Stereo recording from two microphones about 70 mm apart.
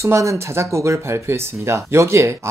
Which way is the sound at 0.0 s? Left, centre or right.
Right.